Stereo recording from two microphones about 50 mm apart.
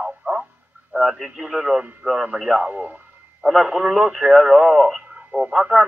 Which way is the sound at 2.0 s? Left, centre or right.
Right.